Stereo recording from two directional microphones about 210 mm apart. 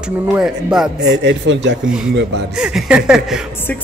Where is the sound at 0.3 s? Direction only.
5° right (ahead or behind).